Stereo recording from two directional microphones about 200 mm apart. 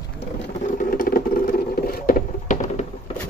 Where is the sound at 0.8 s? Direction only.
45° left (ahead or behind).